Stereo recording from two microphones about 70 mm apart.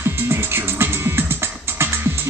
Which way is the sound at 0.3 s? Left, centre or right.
Right.